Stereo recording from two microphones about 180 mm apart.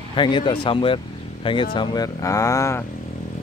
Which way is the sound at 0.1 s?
25° left (ahead or behind).